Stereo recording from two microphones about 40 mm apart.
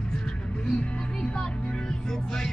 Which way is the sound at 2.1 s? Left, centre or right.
Centre.